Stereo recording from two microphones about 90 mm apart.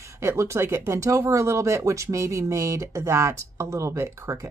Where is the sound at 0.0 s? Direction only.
30° right (ahead or behind).